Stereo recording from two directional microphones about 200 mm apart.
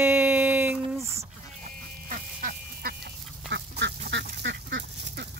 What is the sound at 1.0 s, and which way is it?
Duck, 30° right (ahead or behind).